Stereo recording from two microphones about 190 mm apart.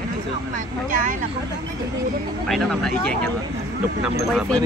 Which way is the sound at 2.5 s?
Centre (ahead or behind).